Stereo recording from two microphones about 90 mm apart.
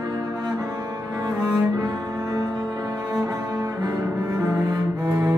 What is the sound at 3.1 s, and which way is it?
Cello, 45° right (ahead or behind).